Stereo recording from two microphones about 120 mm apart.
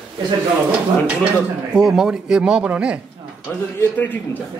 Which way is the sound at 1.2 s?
5° right (ahead or behind).